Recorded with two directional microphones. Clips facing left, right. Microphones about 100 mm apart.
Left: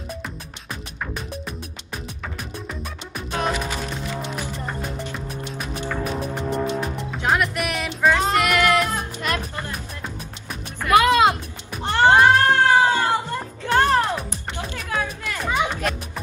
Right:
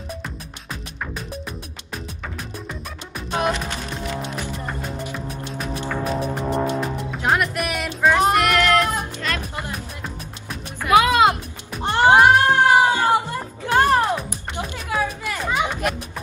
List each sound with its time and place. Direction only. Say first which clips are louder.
0.7 s music: even; centre (ahead or behind)
3.3 s music: right 3 dB; 15° right (ahead or behind)
3.5 s music: left 1 dB; centre (ahead or behind)
8.1 s music: right 4 dB; 15° right (ahead or behind)
8.5 s music: right 1 dB; 10° left (ahead or behind)
10.8 s music: even; 5° right (ahead or behind)
11.8 s cat: right 1 dB; 20° right (ahead or behind)
13.4 s music: right 1 dB; 10° right (ahead or behind)